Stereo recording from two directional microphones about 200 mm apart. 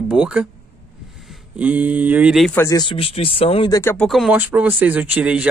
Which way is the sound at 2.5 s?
15° left (ahead or behind).